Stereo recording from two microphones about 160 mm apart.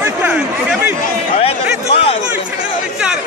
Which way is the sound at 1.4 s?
35° left (ahead or behind).